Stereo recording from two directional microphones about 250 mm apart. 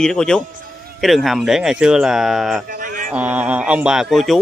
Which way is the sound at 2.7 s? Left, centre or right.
Right.